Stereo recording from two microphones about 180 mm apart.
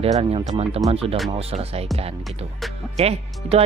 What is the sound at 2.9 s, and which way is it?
Speech, 35° right (ahead or behind).